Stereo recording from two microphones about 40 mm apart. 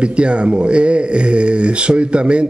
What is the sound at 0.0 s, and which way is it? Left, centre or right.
A man's voice, right.